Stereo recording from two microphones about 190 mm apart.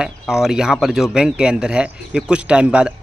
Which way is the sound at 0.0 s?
5° right (ahead or behind).